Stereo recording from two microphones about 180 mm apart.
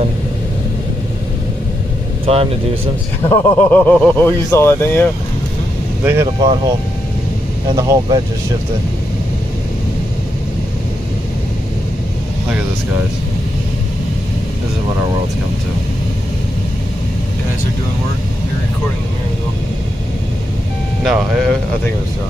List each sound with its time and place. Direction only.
2.2 s speech: 30° right (ahead or behind)
3.3 s speech: 10° left (ahead or behind)
6.0 s speech: 15° right (ahead or behind)
7.7 s speech: 20° right (ahead or behind)
21.0 s speech: centre (ahead or behind)